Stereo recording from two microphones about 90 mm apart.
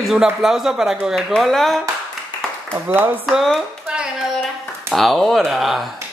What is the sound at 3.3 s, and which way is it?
Speech, centre (ahead or behind).